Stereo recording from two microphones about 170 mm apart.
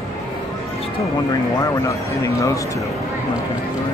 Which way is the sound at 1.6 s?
20° left (ahead or behind).